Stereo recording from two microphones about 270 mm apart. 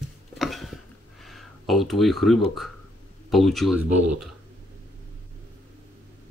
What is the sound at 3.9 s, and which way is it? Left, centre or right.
Speech, right.